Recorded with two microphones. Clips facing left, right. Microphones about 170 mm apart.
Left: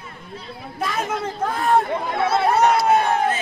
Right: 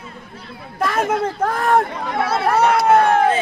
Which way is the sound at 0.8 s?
60° right (ahead or behind).